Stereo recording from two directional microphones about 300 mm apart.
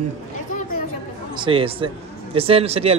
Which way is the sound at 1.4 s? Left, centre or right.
Centre.